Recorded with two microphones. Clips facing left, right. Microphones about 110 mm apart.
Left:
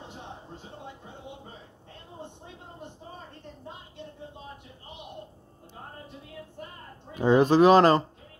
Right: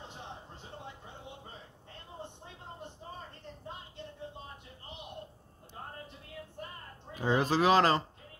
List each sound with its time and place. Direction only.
7.2 s speech: 20° left (ahead or behind)